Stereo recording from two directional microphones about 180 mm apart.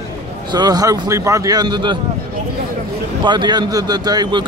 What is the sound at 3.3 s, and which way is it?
Speech, 25° right (ahead or behind).